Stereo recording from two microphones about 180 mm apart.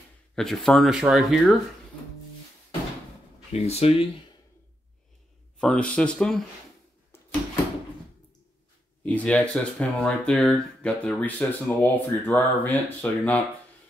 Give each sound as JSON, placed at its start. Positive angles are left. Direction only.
{"t": 0.4, "sound": "speech", "side_deg": 0}
{"t": 3.5, "sound": "speech", "side_deg": 35}
{"t": 5.6, "sound": "speech", "side_deg": 5}
{"t": 9.0, "sound": "speech", "side_deg": 10}